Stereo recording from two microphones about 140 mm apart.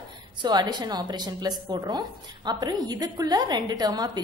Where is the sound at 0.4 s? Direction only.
30° right (ahead or behind).